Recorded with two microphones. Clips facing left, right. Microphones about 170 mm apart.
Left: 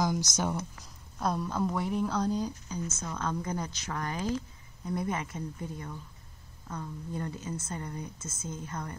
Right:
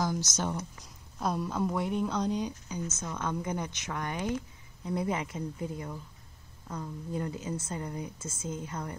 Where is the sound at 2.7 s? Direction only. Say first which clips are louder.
Even; 20° right (ahead or behind).